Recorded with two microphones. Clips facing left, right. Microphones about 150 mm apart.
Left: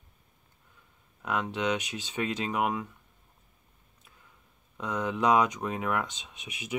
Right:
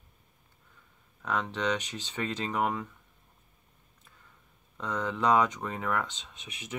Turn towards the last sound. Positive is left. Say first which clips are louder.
# left 4 dB
turn(degrees=10)  # may be behind; listen again after turning